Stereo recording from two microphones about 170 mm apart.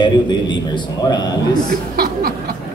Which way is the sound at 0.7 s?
25° left (ahead or behind).